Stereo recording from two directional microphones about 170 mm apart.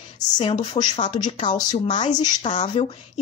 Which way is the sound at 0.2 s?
25° left (ahead or behind).